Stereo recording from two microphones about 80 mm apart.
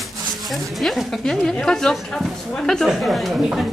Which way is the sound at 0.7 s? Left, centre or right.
Centre.